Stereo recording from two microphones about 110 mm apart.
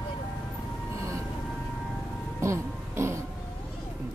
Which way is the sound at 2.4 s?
25° right (ahead or behind).